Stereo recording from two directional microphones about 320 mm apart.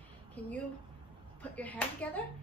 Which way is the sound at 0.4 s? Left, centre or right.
Centre.